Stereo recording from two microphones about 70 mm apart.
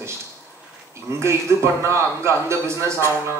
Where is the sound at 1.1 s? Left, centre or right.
Right.